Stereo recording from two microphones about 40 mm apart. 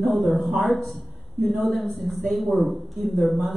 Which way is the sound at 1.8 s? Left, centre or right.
Centre.